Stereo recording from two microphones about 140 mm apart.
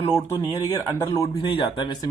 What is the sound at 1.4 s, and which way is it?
Speech, 40° left (ahead or behind).